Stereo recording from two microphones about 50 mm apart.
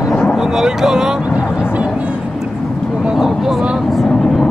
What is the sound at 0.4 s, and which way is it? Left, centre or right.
Speech, centre.